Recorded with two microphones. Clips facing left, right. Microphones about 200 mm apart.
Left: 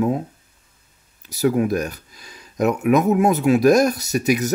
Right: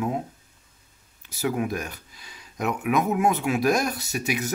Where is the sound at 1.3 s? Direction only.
40° left (ahead or behind).